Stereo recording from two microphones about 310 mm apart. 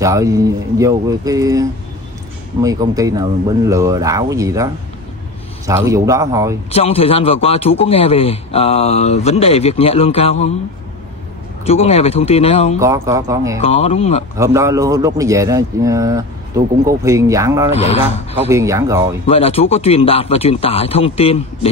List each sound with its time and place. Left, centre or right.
0.0 s a man's voice: centre
5.7 s a man's voice: centre
6.7 s speech: centre
11.6 s speech: centre
12.8 s a man's voice: centre
13.6 s speech: left
14.4 s a man's voice: centre
19.2 s speech: centre